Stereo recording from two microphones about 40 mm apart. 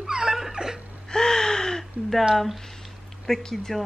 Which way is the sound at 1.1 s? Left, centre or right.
Centre.